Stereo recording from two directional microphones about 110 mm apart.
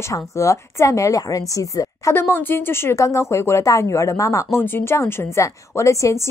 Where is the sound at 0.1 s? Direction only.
30° left (ahead or behind).